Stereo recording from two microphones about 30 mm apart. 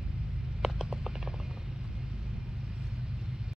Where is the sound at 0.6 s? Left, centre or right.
Right.